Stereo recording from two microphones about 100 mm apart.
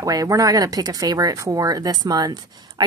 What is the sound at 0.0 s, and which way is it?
Speech, 35° right (ahead or behind).